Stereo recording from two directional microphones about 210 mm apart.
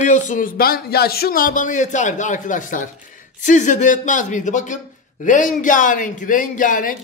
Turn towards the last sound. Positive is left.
turn(degrees=40)  # may be behind; listen again after turning